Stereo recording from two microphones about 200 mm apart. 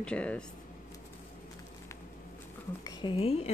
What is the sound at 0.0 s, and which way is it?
Speech, 5° left (ahead or behind).